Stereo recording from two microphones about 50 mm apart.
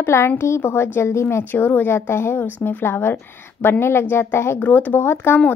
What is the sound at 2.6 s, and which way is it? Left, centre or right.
A woman's voice, left.